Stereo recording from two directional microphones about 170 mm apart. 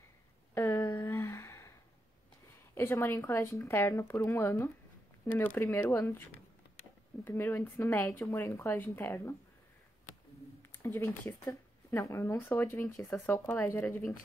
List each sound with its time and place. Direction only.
0.6 s a sound: 15° left (ahead or behind)
2.7 s speech: 15° left (ahead or behind)
7.2 s speech: 15° left (ahead or behind)
10.8 s speech: 15° left (ahead or behind)